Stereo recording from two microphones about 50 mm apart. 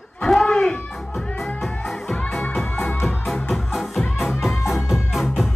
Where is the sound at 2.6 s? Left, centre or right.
Left.